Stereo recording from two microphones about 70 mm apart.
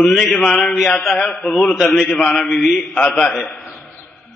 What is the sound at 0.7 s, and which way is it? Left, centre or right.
A man's voice, centre.